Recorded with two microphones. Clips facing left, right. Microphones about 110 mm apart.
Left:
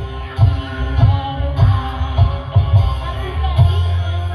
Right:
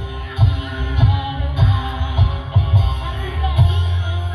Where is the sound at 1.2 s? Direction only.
35° left (ahead or behind).